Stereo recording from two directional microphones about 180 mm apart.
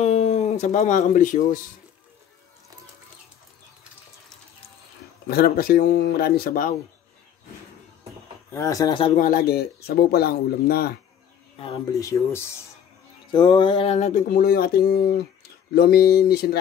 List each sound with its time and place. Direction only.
0.0 s speech: 35° left (ahead or behind)
5.3 s speech: 55° left (ahead or behind)
8.5 s speech: 15° left (ahead or behind)
9.1 s speech: 50° left (ahead or behind)
11.5 s speech: 30° left (ahead or behind)
12.0 s speech: 15° left (ahead or behind)
13.3 s a sound: 25° left (ahead or behind); by 14.4 s 40° left (ahead or behind)
14.4 s speech: 60° left (ahead or behind)